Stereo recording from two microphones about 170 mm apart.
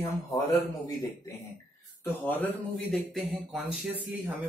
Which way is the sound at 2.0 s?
10° left (ahead or behind).